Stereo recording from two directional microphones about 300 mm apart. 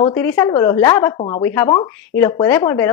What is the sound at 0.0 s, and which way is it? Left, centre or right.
A woman's voice, centre.